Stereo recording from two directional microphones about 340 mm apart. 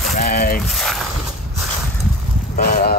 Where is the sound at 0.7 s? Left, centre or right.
Centre.